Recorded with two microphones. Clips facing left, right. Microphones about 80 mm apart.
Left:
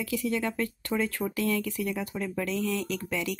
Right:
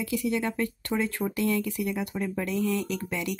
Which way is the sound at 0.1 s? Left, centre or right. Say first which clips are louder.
Right 1 dB; centre.